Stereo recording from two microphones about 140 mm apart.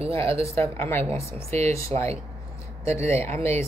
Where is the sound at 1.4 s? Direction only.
50° right (ahead or behind).